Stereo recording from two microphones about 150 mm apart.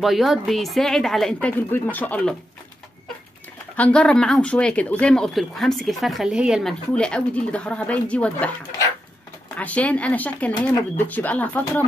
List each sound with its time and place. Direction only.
0.0 s speech: centre (ahead or behind)
3.7 s speech: 10° left (ahead or behind)
6.9 s speech: 5° left (ahead or behind)
9.6 s speech: 10° left (ahead or behind)